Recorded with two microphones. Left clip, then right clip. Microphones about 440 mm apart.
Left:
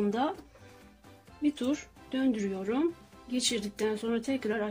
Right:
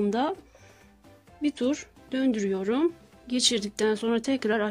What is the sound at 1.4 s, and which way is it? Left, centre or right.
Speech, right.